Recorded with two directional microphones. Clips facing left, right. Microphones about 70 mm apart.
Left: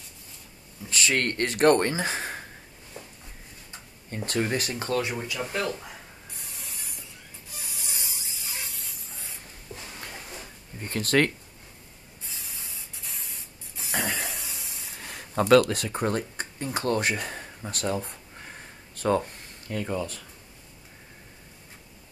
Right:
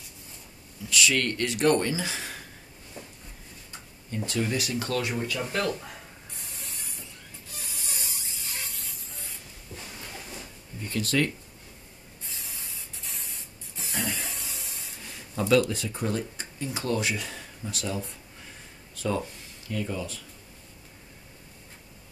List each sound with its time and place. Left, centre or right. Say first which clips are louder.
0.8 s speech: even; left
4.3 s speech: left 2 dB; left
5.2 s speech: right 1 dB; centre
7.5 s a sound: even; centre
10.8 s speech: left 3 dB; left
12.3 s spray: even; centre
13.9 s spray: left 3 dB; left
15.0 s speech: left 4 dB; left